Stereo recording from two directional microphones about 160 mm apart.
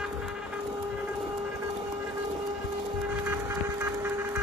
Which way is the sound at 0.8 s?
5° right (ahead or behind).